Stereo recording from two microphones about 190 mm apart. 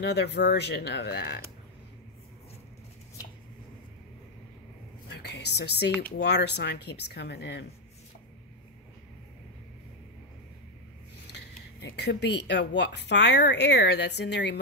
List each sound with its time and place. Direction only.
0.0 s speech: 65° left (ahead or behind)
5.1 s a sound: 60° left (ahead or behind)
6.1 s speech: 60° left (ahead or behind)
11.8 s speech: 65° left (ahead or behind)